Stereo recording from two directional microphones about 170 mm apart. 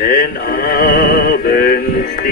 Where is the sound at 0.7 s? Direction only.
60° left (ahead or behind).